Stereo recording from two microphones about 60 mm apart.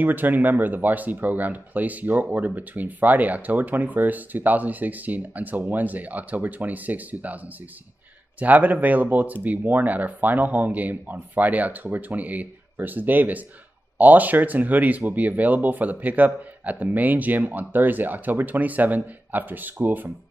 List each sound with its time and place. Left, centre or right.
0.0 s speech: right
8.4 s speech: right